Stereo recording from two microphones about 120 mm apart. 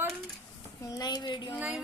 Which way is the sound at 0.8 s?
35° left (ahead or behind).